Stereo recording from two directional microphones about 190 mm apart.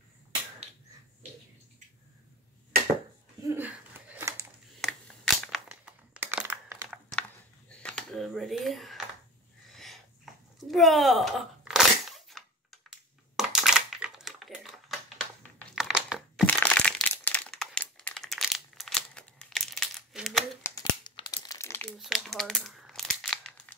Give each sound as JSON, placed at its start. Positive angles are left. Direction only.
{"t": 3.4, "sound": "a sound", "side_deg": -10}
{"t": 4.8, "sound": "a sound", "side_deg": 0}
{"t": 5.7, "sound": "crushing", "side_deg": -10}
{"t": 7.8, "sound": "a sound", "side_deg": 5}
{"t": 10.6, "sound": "crunch", "side_deg": 0}
{"t": 12.3, "sound": "crushing", "side_deg": 0}
{"t": 16.4, "sound": "crumpling", "side_deg": 10}
{"t": 20.6, "sound": "crumpling", "side_deg": 20}
{"t": 21.9, "sound": "crumpling", "side_deg": 0}